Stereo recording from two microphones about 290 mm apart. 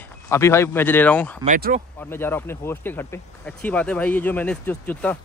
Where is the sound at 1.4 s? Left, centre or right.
Right.